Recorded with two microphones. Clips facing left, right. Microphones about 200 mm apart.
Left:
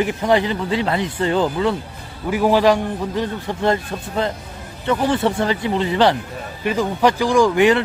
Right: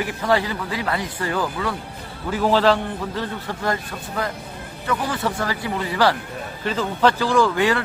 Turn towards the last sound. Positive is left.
turn(degrees=20)  # may be behind; listen again after turning